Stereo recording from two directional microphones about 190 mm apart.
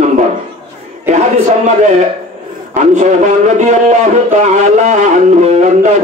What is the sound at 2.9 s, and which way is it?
Speech, 40° right (ahead or behind).